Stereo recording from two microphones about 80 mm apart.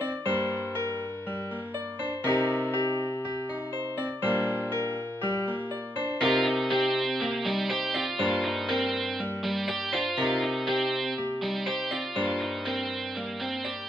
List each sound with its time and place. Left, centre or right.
2.2 s music: left
4.2 s music: right
6.2 s music: centre